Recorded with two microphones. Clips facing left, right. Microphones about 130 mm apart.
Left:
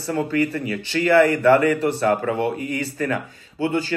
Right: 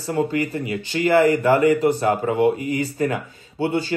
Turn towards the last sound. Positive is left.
turn(degrees=-20)  # may be behind; listen again after turning